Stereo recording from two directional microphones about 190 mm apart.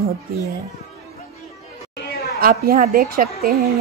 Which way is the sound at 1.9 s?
55° left (ahead or behind).